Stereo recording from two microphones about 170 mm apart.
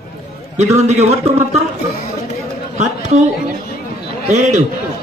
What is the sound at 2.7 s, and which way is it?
A man's voice, 40° right (ahead or behind).